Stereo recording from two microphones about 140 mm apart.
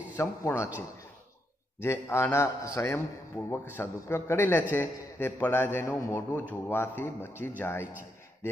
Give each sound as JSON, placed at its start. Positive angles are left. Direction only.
{"t": 0.2, "sound": "a man's voice", "side_deg": 20}
{"t": 1.8, "sound": "a man's voice", "side_deg": 15}